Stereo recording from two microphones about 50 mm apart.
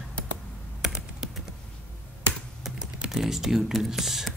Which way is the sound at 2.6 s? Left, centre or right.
Centre.